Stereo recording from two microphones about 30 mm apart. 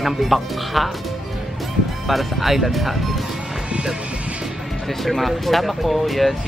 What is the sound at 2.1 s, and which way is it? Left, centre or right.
Speech, centre.